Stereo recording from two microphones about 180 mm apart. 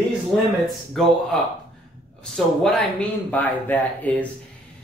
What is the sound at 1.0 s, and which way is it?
Speech, centre (ahead or behind).